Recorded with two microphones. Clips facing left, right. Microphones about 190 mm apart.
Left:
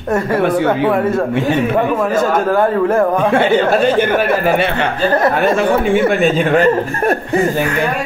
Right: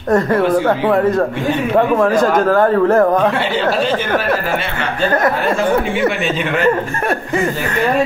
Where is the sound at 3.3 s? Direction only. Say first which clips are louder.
Left 5 dB; 50° left (ahead or behind).